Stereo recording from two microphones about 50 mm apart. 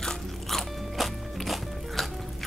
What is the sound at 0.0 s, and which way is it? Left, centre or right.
Music, centre.